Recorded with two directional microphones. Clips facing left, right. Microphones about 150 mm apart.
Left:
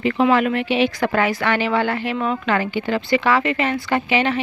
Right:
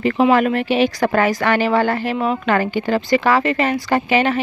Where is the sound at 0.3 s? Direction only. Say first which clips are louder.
Right 2 dB; 40° right (ahead or behind).